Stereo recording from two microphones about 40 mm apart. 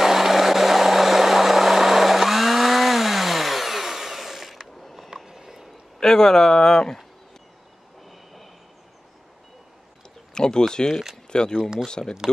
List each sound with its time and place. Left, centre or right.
0.0 s vehicle: centre
5.1 s a sound: centre
5.9 s speech: centre
10.3 s speech: centre